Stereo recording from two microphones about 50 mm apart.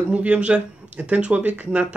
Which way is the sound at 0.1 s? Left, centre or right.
Right.